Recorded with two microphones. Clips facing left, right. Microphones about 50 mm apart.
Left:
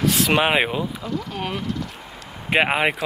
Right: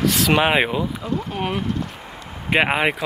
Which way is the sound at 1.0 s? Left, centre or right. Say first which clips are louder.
Right 2 dB; right.